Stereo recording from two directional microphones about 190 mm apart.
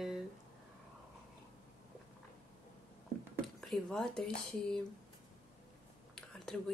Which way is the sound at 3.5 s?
Centre (ahead or behind).